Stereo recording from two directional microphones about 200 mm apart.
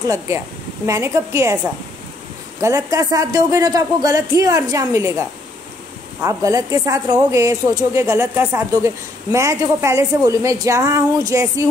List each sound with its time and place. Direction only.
0.8 s a woman's voice: 15° right (ahead or behind)
2.6 s a woman's voice: 15° right (ahead or behind)
6.2 s a woman's voice: 15° right (ahead or behind)